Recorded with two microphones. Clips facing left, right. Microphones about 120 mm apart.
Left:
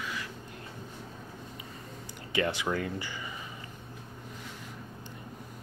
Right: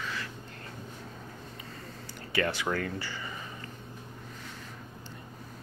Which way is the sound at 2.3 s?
20° left (ahead or behind).